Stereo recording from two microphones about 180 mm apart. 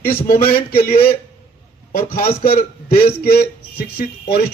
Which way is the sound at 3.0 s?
60° left (ahead or behind).